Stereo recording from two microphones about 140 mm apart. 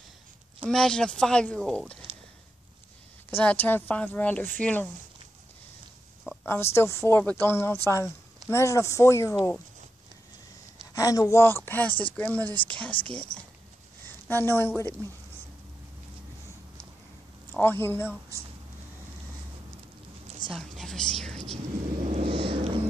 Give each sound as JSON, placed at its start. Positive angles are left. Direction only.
{"t": 0.7, "sound": "speech", "side_deg": 5}
{"t": 3.3, "sound": "speech", "side_deg": 15}
{"t": 6.4, "sound": "speech", "side_deg": 15}
{"t": 11.0, "sound": "speech", "side_deg": 25}
{"t": 17.5, "sound": "speech", "side_deg": 15}
{"t": 20.5, "sound": "a woman's voice", "side_deg": 5}
{"t": 21.9, "sound": "a sound", "side_deg": -65}
{"t": 22.5, "sound": "a sound", "side_deg": -40}